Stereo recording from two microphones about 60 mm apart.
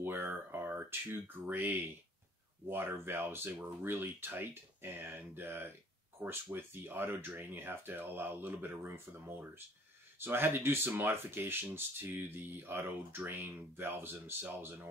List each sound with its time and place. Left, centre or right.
0.2 s speech: right